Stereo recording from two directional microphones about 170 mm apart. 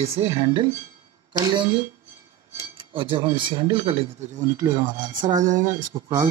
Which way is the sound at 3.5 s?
30° right (ahead or behind).